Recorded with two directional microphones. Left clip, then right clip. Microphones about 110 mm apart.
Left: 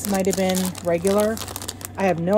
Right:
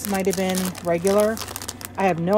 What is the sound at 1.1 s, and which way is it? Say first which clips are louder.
Speech: right 4 dB; 20° right (ahead or behind).